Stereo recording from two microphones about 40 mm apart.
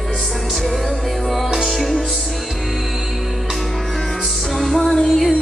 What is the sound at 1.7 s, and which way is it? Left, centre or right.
Music, centre.